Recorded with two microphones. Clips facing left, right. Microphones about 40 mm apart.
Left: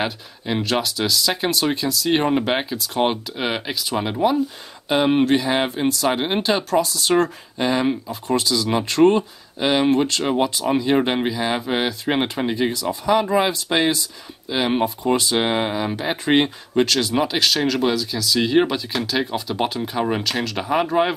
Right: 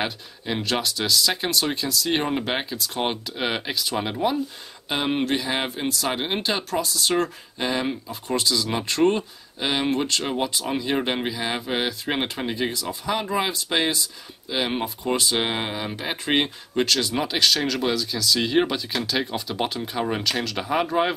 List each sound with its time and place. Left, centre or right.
0.0 s speech: centre